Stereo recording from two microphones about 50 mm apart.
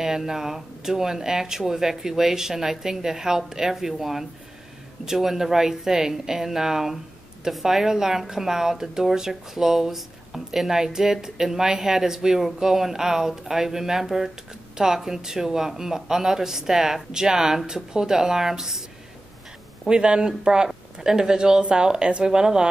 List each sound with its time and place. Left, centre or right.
0.0 s speech: centre
19.9 s speech: centre